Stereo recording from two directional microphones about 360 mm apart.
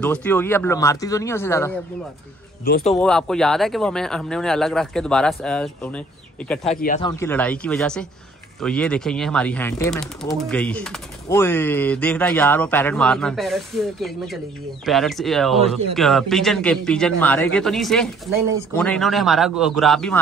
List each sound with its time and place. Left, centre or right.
0.0 s speech: centre
2.6 s a man's voice: left
3.0 s speech: centre
6.7 s a man's voice: left
7.1 s speech: centre